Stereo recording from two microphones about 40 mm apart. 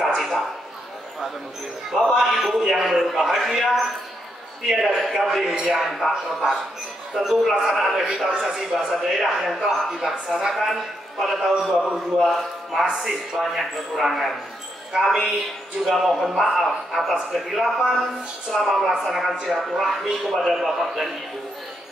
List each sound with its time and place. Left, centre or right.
1.9 s a man's voice: centre
5.8 s a man's voice: centre
6.4 s speech: right
7.2 s a man's voice: centre
12.2 s a man's voice: centre
15.8 s a man's voice: centre